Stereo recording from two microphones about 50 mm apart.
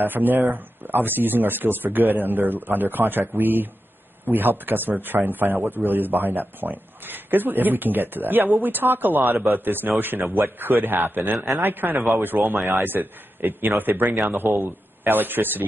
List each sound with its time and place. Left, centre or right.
0.0 s a man's voice: right